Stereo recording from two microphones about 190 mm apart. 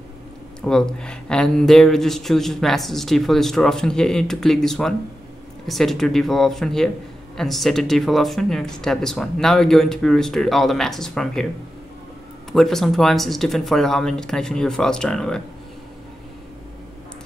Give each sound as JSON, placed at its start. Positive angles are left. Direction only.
{"t": 0.6, "sound": "speech", "side_deg": 5}
{"t": 12.5, "sound": "speech", "side_deg": 0}